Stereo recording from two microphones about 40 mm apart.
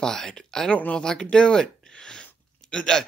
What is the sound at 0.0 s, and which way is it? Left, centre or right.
Speech, centre.